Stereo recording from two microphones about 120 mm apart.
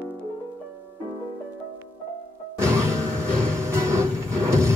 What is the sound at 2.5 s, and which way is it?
Music, 25° right (ahead or behind).